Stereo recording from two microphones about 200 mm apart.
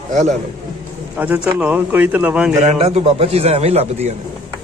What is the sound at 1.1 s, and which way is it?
Speech, 10° right (ahead or behind).